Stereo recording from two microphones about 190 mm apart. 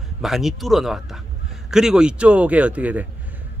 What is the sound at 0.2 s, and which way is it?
A man's voice, centre (ahead or behind).